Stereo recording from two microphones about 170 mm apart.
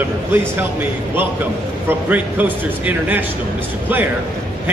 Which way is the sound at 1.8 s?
10° right (ahead or behind).